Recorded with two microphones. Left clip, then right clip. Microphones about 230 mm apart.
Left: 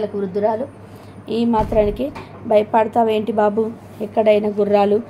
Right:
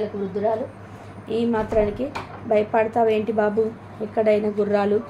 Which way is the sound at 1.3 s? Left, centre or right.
Left.